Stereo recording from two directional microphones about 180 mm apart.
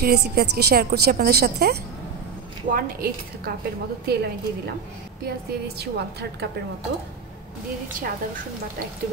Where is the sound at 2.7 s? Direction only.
55° right (ahead or behind).